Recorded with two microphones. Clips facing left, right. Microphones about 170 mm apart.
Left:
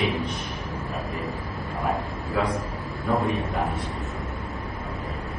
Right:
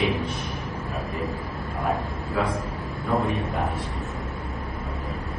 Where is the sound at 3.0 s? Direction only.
Centre (ahead or behind).